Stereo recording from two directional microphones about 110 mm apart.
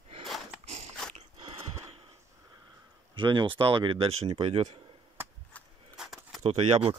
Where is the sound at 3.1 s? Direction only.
45° right (ahead or behind); by 4.7 s 70° right (ahead or behind).